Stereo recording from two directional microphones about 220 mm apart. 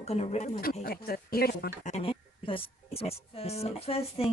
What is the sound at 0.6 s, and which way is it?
Speech, 40° left (ahead or behind).